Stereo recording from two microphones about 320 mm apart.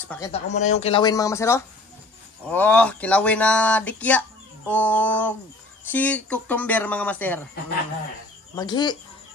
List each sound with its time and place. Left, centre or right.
0.1 s speech: centre
0.5 s speech: left; by 7.4 s centre
8.5 s speech: centre